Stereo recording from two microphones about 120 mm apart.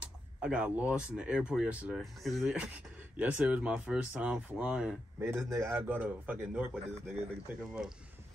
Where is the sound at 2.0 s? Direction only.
Centre (ahead or behind).